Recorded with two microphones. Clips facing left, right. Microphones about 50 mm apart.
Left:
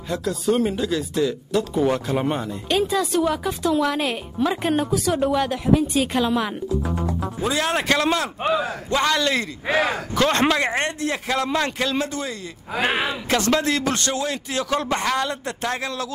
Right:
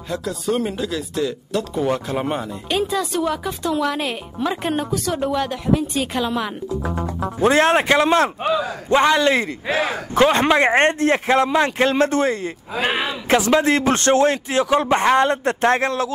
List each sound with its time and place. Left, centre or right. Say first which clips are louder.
0.1 s speech: left 1 dB; centre
6.8 s music: right 1 dB; right
7.6 s speech: right 5 dB; right
8.5 s speech: right 1 dB; left
8.8 s speech: right 7 dB; right
9.7 s speech: left 2 dB; centre
10.1 s speech: right 6 dB; centre
10.5 s speech: right 7 dB; right
11.8 s a man's voice: right 7 dB; right
13.6 s a man's voice: right 5 dB; right